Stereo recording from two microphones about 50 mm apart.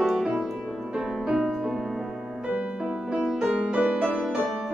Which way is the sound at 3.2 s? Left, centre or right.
Centre.